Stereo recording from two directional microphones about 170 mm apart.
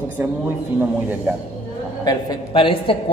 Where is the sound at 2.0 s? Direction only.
25° left (ahead or behind).